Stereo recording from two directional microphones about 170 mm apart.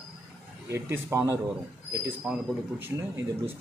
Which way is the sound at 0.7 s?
15° right (ahead or behind).